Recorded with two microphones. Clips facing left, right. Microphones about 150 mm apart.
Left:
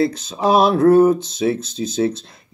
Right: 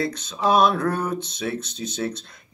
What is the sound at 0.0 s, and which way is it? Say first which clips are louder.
Speech: left 6 dB; 35° left (ahead or behind).